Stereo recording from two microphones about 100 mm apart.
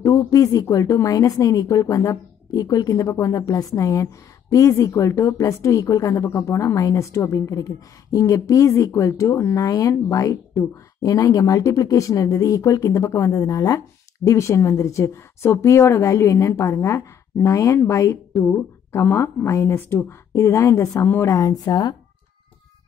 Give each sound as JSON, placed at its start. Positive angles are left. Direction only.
{"t": 0.0, "sound": "a woman's voice", "side_deg": 35}
{"t": 21.4, "sound": "speech", "side_deg": 40}